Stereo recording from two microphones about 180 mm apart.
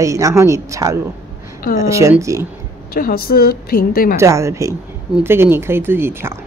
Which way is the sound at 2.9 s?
55° left (ahead or behind).